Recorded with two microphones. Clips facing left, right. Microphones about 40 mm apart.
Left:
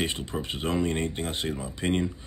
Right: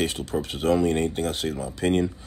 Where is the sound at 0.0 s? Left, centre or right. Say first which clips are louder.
Right 4 dB; left.